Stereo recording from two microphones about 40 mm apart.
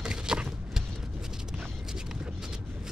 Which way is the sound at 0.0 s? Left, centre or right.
Right.